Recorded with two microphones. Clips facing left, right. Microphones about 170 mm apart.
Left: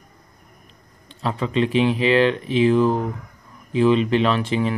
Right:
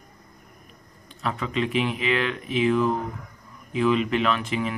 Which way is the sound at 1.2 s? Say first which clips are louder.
Left 5 dB; 30° left (ahead or behind).